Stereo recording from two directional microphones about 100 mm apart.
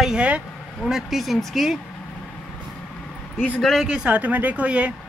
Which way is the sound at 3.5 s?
5° left (ahead or behind).